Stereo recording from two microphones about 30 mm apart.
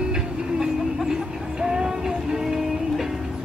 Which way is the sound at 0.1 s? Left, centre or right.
Right.